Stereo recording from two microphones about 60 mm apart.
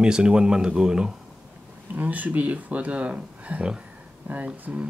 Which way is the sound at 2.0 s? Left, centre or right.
Right.